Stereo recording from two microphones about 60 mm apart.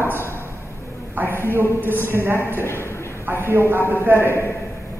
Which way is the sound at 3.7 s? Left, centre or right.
Left.